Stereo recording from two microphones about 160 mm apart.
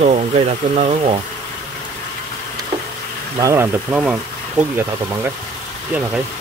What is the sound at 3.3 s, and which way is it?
Speech, 20° right (ahead or behind).